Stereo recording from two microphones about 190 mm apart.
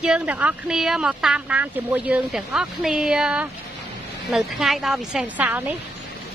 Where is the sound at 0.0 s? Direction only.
5° right (ahead or behind).